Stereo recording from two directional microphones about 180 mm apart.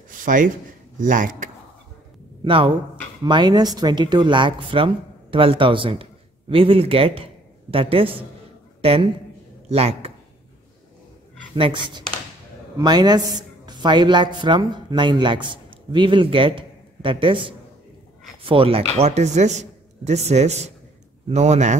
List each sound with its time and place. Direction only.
0.1 s a sound: 45° right (ahead or behind)
0.9 s speech: 45° right (ahead or behind)
2.4 s a man's voice: 30° right (ahead or behind)
9.7 s a man's voice: 35° right (ahead or behind)
11.5 s a man's voice: 30° right (ahead or behind)